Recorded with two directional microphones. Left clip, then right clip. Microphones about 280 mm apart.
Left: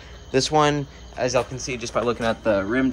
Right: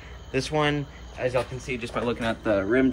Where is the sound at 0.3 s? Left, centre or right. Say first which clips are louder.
Left 6 dB; centre.